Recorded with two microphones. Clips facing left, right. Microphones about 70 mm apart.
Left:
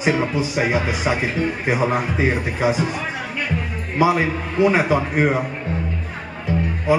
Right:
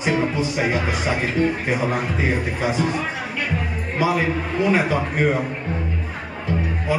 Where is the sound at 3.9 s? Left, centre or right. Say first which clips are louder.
Left 3 dB; centre.